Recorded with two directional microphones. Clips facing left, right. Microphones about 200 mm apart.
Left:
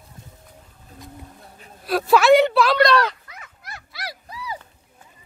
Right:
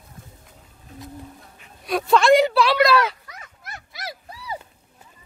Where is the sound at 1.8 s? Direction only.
5° left (ahead or behind).